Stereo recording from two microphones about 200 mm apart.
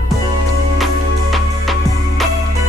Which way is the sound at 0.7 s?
Centre (ahead or behind).